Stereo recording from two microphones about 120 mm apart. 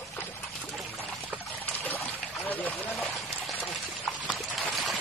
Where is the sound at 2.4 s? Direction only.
15° left (ahead or behind).